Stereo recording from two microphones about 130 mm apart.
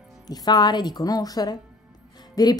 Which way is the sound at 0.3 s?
30° left (ahead or behind).